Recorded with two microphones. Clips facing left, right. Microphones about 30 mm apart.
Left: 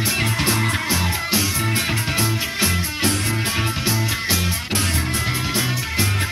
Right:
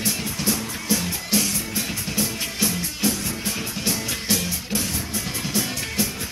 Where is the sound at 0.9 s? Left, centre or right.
Left.